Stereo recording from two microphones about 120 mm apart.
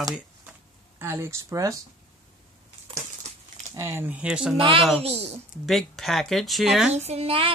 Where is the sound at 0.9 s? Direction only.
20° right (ahead or behind).